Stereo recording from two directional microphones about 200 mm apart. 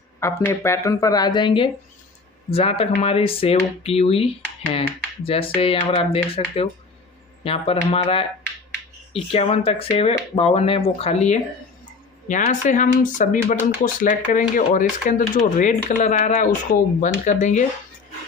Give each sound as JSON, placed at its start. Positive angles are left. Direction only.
{"t": 0.5, "sound": "speech", "side_deg": 15}